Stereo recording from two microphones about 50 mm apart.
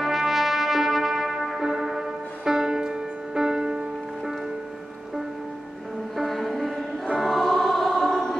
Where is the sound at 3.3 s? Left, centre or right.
Centre.